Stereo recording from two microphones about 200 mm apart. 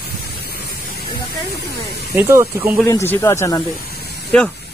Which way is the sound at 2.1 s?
15° right (ahead or behind).